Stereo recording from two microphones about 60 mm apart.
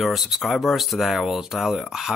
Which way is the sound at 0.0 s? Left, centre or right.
Centre.